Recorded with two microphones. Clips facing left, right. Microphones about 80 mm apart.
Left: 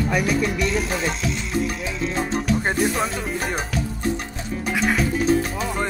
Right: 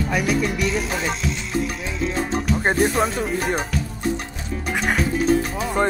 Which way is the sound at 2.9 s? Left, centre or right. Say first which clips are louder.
Right 3 dB; centre.